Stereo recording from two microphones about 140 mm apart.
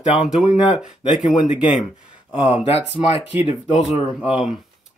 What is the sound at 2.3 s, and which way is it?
Speech, 45° left (ahead or behind).